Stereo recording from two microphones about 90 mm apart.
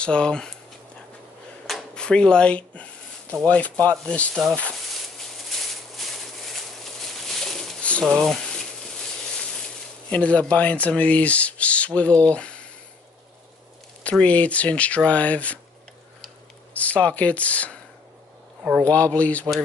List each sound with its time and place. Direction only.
0.0 s speech: 10° left (ahead or behind)
1.7 s a sound: 5° left (ahead or behind)
3.4 s speech: 15° left (ahead or behind)
5.1 s a sound: 5° left (ahead or behind)
8.0 s speech: centre (ahead or behind)
10.0 s speech: 15° left (ahead or behind)
14.2 s speech: 15° left (ahead or behind)
16.7 s speech: 15° left (ahead or behind)
18.6 s speech: 15° right (ahead or behind)
18.9 s speech: 15° left (ahead or behind)